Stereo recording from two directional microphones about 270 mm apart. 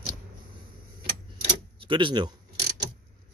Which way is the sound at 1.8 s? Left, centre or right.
Centre.